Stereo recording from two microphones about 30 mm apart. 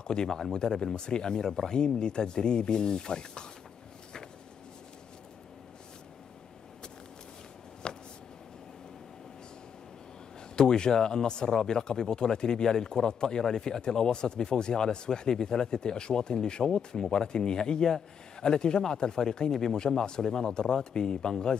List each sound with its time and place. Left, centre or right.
0.0 s speech: left
7.8 s a sound: left
10.5 s speech: left